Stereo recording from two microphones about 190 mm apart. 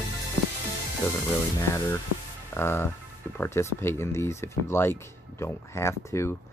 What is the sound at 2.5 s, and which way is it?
Speech, 10° left (ahead or behind).